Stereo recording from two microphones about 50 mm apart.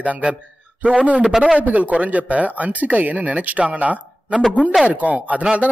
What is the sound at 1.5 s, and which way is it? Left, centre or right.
Speech, right.